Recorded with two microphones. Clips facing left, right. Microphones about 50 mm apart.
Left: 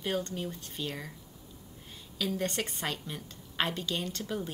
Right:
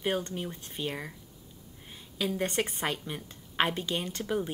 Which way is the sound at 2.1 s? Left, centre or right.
Right.